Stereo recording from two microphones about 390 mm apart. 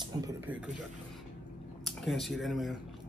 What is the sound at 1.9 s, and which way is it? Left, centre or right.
Speech, centre.